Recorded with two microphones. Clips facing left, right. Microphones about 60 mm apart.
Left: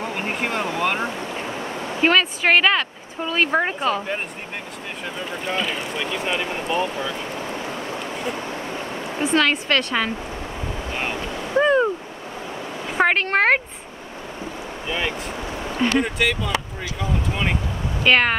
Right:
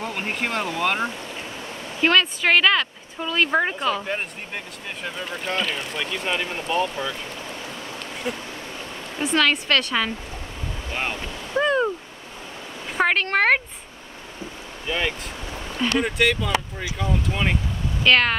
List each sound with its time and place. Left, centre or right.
0.0 s speech: centre
1.1 s a sound: left
2.0 s speech: centre
7.3 s a sound: left
9.4 s speech: centre
11.1 s waves: left
11.5 s a sound: centre
12.9 s speech: centre
14.9 s speech: centre
15.4 s a sound: left
15.9 s speech: centre
18.0 s speech: centre